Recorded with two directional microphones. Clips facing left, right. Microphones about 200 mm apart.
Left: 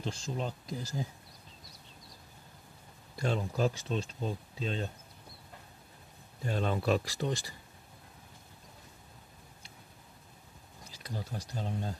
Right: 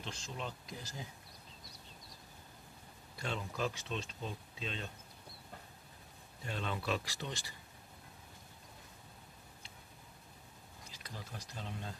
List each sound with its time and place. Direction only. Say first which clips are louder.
0.2 s speech: left 7 dB; 40° left (ahead or behind)
3.2 s speech: left 8 dB; 40° left (ahead or behind)
6.4 s speech: left 8 dB; 40° left (ahead or behind)
11.0 s speech: left 9 dB; 35° left (ahead or behind)